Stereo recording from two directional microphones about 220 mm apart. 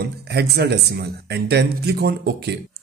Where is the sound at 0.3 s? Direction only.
50° right (ahead or behind).